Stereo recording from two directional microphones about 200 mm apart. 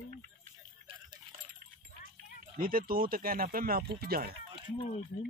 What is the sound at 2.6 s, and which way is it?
Speech, 45° right (ahead or behind).